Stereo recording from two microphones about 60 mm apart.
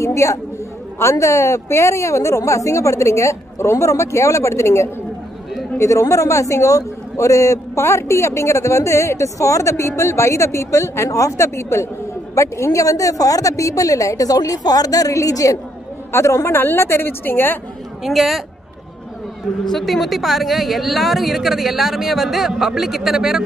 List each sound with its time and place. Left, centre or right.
0.0 s a sound: left
0.9 s a man's voice: left
16.1 s a woman's voice: left
16.5 s a woman's voice: left
18.0 s a woman's voice: centre
19.7 s a woman's voice: centre